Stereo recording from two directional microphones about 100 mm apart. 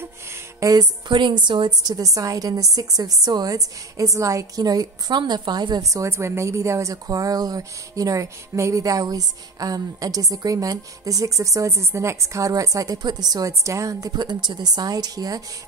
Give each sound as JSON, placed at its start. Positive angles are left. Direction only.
{"t": 0.6, "sound": "a woman's voice", "side_deg": -40}
{"t": 2.0, "sound": "a woman's voice", "side_deg": -35}